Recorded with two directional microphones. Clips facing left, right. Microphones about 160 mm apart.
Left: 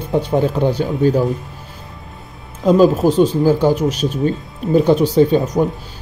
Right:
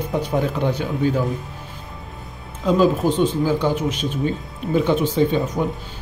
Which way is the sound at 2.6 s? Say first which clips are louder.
Left 5 dB; 40° left (ahead or behind).